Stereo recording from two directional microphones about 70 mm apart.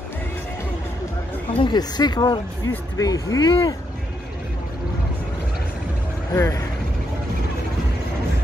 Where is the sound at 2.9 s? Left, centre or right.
Left.